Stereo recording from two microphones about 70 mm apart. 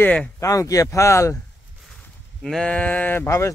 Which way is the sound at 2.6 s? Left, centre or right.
Centre.